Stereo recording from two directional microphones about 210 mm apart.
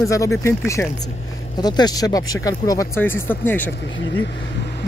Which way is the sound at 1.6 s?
20° left (ahead or behind).